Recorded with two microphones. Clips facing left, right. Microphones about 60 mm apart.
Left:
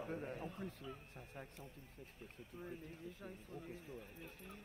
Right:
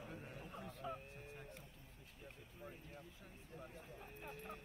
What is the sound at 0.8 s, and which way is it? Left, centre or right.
Speech, right.